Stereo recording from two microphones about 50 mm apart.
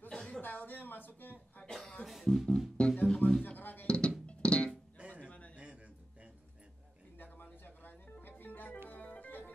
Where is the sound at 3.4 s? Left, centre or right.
Left.